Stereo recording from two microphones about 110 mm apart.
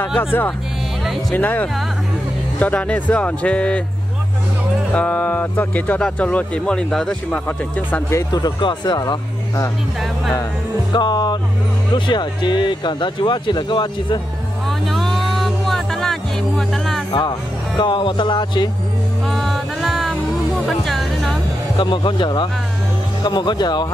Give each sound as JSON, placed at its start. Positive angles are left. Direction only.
{"t": 0.2, "sound": "speech", "side_deg": 20}
{"t": 4.9, "sound": "speech", "side_deg": 15}
{"t": 8.2, "sound": "speech", "side_deg": 35}
{"t": 10.9, "sound": "speech", "side_deg": 40}
{"t": 14.7, "sound": "music", "side_deg": 0}
{"t": 17.1, "sound": "speech", "side_deg": 45}
{"t": 19.2, "sound": "music", "side_deg": 0}
{"t": 21.7, "sound": "speech", "side_deg": 45}